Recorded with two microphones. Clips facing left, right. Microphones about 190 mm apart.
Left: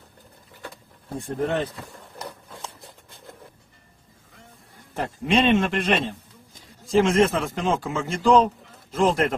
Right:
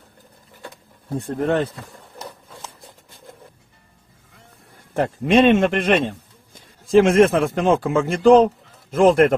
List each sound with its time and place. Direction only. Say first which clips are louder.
1.2 s a man's voice: right 4 dB; 60° right (ahead or behind)
4.9 s a man's voice: right 6 dB; 55° right (ahead or behind)